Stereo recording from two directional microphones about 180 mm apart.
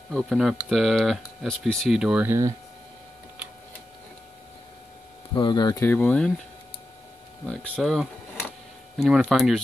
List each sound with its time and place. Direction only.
0.1 s speech: centre (ahead or behind)
5.3 s speech: 25° left (ahead or behind); by 6.3 s 5° left (ahead or behind)
7.4 s speech: 5° left (ahead or behind)